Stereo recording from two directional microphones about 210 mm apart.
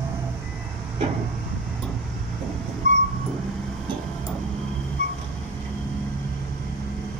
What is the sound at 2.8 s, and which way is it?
Dog, 35° right (ahead or behind).